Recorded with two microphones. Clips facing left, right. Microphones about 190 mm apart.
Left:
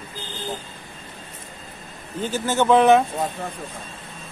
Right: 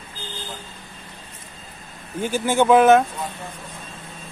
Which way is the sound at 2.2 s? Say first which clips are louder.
Right 2 dB; 10° right (ahead or behind).